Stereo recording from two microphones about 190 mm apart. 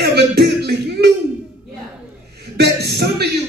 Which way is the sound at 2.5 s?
60° right (ahead or behind).